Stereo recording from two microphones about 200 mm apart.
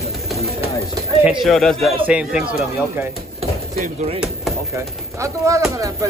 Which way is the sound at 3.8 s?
35° right (ahead or behind).